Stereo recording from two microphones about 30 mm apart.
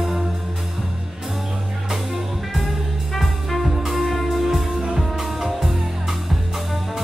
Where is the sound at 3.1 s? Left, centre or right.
Centre.